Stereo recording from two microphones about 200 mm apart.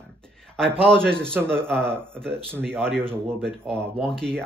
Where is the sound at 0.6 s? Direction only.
5° left (ahead or behind).